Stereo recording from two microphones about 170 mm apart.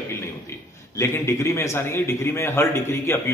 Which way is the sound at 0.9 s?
15° left (ahead or behind).